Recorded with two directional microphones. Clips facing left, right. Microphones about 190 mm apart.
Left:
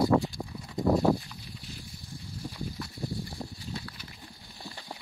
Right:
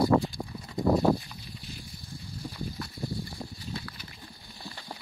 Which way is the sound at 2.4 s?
Centre (ahead or behind).